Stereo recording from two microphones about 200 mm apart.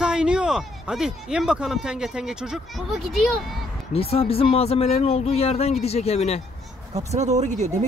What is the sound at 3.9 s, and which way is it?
Speech, 30° left (ahead or behind).